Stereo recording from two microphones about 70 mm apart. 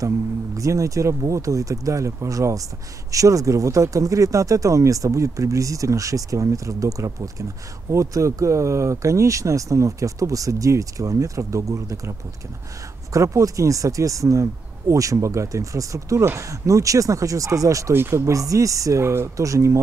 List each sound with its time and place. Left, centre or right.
0.6 s speech: right
17.9 s speech: right